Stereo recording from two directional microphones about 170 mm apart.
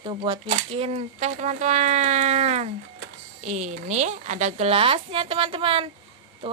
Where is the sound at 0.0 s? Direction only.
30° right (ahead or behind).